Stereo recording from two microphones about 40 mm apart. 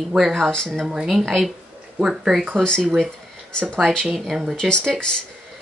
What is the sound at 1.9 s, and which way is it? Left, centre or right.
Speech, centre.